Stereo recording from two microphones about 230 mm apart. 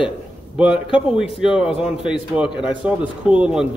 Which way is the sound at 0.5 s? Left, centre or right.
Centre.